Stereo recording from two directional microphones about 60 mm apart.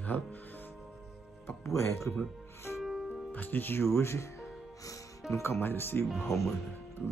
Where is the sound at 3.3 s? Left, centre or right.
Left.